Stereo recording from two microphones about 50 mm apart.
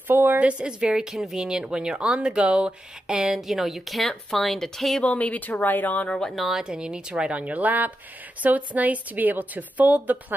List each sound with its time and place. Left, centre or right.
0.1 s a woman's voice: right
0.4 s a woman's voice: right; by 5.0 s centre
5.0 s speech: left
6.0 s speech: centre
6.3 s a woman's voice: centre
6.6 s a woman's voice: centre; by 10.1 s right